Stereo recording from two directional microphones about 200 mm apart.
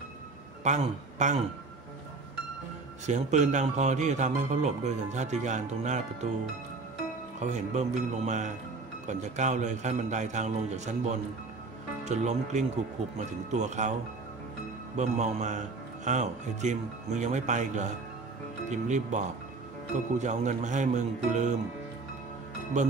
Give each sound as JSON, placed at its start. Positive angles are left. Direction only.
{"t": 0.7, "sound": "a man's voice", "side_deg": -35}
{"t": 3.1, "sound": "a man's voice", "side_deg": -35}
{"t": 7.3, "sound": "a man's voice", "side_deg": -35}
{"t": 15.0, "sound": "a man's voice", "side_deg": -35}